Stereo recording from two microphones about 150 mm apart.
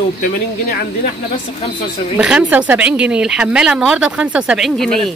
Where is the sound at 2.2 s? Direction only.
10° right (ahead or behind).